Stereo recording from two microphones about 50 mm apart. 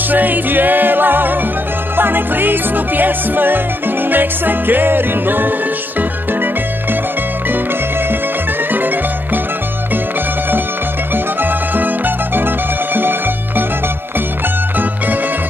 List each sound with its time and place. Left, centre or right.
0.1 s music: right
8.7 s music: right
12.4 s music: right